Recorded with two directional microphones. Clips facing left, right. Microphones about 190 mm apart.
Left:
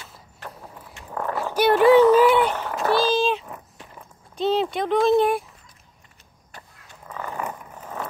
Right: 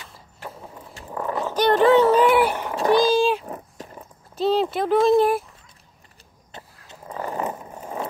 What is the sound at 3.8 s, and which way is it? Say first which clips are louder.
Walk: right 6 dB; 40° right (ahead or behind).